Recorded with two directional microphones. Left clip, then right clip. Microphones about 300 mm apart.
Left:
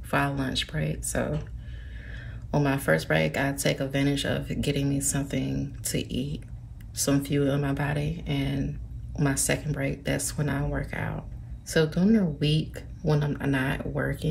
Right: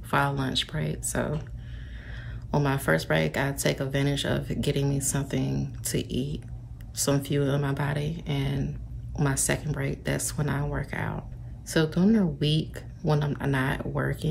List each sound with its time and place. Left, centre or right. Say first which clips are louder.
0.1 s speech: right 1 dB; centre